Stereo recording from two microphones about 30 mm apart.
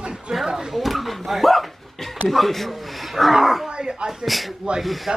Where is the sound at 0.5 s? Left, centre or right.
Centre.